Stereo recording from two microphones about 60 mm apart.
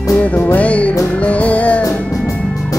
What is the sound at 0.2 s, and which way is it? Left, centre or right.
Music, left.